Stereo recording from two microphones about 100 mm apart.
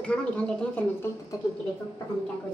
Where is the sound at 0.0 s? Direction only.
10° left (ahead or behind).